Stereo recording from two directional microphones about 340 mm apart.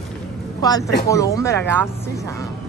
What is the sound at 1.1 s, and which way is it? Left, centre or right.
Speech, centre.